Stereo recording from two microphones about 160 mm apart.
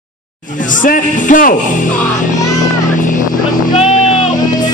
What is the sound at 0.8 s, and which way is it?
Speech, 55° left (ahead or behind).